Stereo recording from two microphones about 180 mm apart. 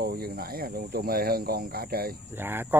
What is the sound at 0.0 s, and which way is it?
Speech, 55° right (ahead or behind).